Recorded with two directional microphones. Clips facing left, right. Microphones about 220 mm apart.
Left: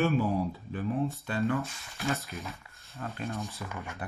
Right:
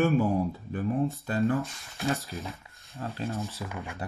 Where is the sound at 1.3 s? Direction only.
40° right (ahead or behind).